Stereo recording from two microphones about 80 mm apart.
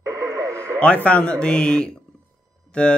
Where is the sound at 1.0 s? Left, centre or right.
Centre.